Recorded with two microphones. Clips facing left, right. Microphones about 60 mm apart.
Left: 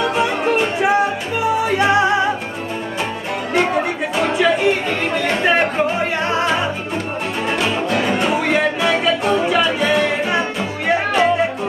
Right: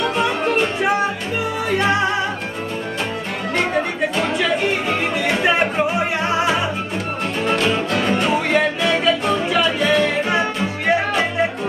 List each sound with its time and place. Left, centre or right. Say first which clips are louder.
0.1 s music: left 1 dB; centre
4.2 s music: left 5 dB; centre
7.6 s music: even; centre